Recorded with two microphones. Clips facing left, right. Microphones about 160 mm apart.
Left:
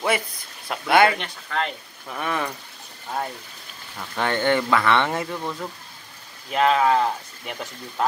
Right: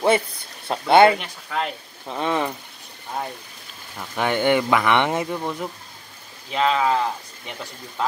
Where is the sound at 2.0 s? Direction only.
25° right (ahead or behind).